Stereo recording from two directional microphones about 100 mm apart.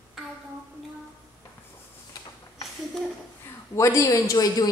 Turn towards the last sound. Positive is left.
turn(degrees=35)  # may be behind; listen again after turning